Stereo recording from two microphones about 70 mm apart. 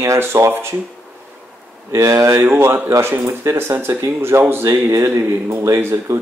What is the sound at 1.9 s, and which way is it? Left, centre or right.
Speech, right.